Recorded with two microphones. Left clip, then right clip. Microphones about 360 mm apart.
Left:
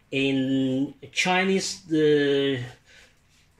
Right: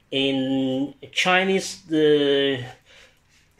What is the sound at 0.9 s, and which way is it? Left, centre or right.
Speech, right.